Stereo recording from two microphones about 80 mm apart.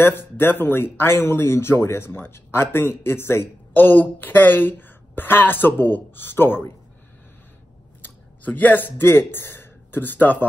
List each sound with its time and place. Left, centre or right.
0.0 s speech: left
8.0 s speech: left